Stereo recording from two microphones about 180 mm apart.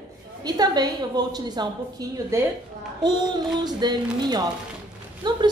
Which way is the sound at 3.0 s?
25° right (ahead or behind).